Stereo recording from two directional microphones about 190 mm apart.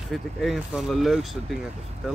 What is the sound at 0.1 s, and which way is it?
Speech, centre (ahead or behind).